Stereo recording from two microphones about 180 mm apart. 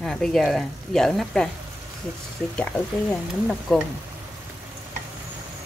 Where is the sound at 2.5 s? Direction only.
5° left (ahead or behind).